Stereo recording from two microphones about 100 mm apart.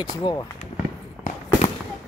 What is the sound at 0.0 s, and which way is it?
Speech, 45° left (ahead or behind).